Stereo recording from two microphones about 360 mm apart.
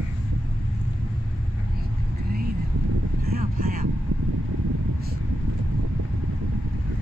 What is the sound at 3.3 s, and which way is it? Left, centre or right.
Vehicle, right.